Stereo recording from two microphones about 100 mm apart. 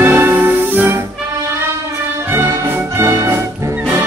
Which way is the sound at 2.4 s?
40° right (ahead or behind).